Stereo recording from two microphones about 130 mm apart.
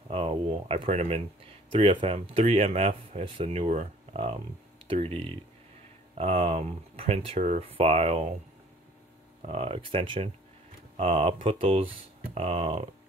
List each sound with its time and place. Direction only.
0.1 s speech: 45° right (ahead or behind)
7.3 s speech: 70° right (ahead or behind)
7.6 s speech: 50° right (ahead or behind)
9.5 s speech: 50° right (ahead or behind)